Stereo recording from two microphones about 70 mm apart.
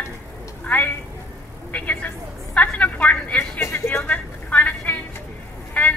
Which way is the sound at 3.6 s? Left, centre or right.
Left.